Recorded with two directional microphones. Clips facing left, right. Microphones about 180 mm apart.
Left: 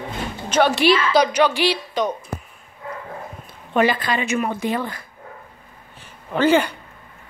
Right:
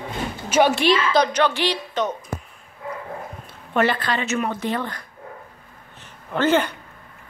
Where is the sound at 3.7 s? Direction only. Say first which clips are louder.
Left 2 dB; 15° left (ahead or behind).